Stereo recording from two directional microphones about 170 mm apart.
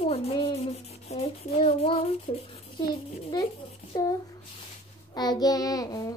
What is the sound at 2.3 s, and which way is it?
Speech, 35° left (ahead or behind).